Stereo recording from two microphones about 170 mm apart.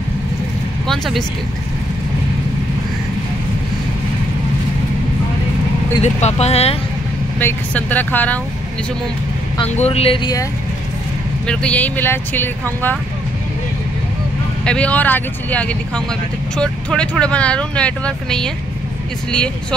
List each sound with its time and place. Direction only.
0.8 s vehicle: centre (ahead or behind)
6.0 s speech: 40° left (ahead or behind)
7.3 s speech: 10° left (ahead or behind)
9.6 s speech: 40° left (ahead or behind)
11.4 s speech: 5° left (ahead or behind)
14.6 s speech: 5° left (ahead or behind)